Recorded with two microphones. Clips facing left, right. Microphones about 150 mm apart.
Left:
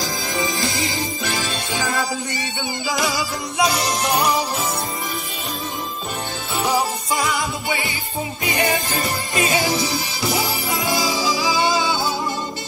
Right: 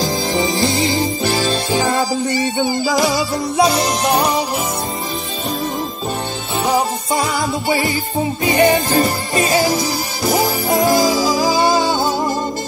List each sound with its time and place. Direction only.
0.0 s music: 25° right (ahead or behind)
0.8 s music: 40° right (ahead or behind)
6.6 s music: 30° right (ahead or behind)